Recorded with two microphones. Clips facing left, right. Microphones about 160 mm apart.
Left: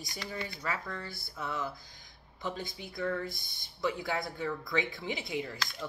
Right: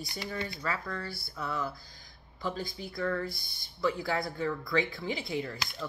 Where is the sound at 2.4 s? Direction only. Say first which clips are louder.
Right 3 dB; 20° left (ahead or behind).